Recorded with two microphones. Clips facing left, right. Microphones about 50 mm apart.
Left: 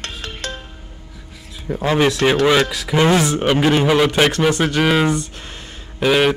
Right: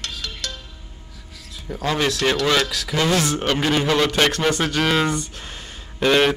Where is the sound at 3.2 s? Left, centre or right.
Centre.